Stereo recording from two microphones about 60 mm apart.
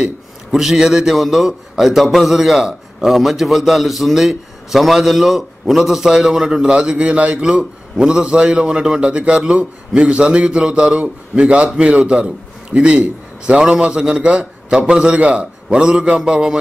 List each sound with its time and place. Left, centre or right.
0.5 s a man's voice: centre